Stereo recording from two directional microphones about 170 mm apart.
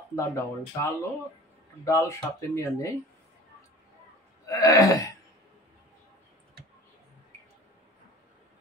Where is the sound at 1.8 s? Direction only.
15° left (ahead or behind).